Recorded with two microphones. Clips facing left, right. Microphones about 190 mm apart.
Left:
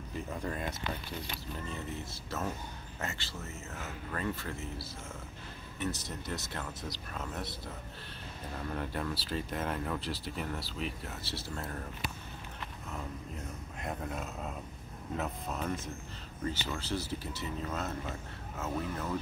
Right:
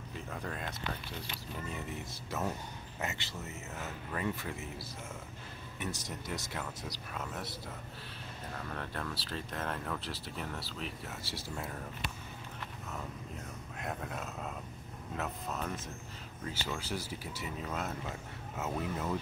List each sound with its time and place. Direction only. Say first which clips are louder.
0.3 s speech: left 3 dB; 5° left (ahead or behind)
3.0 s speech: right 1 dB; 20° right (ahead or behind)
8.6 s speech: left 5 dB; 5° left (ahead or behind)
11.2 s speech: left 1 dB; 10° right (ahead or behind)
13.7 s speech: left 2 dB; centre (ahead or behind); by 19.0 s 20° right (ahead or behind)